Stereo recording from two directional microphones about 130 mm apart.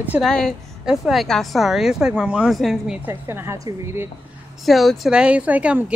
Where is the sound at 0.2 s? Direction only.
5° left (ahead or behind).